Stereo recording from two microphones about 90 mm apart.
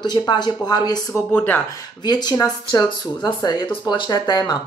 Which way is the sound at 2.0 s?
50° left (ahead or behind).